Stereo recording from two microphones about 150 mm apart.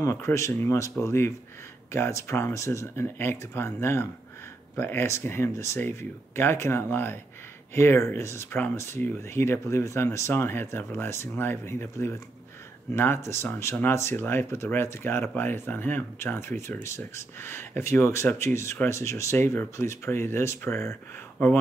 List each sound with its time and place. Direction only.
0.0 s speech: 20° left (ahead or behind)